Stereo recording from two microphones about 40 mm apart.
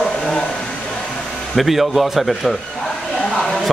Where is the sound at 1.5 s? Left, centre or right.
Centre.